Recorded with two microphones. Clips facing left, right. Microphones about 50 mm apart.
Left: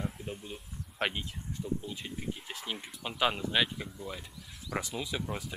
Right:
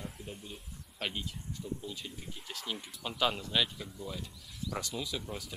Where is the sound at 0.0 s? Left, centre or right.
Left.